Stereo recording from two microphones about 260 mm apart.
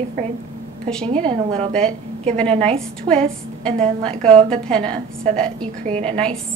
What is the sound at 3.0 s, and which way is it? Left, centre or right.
A woman's voice, centre.